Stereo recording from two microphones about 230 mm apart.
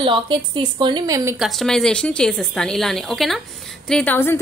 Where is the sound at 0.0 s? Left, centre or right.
Right.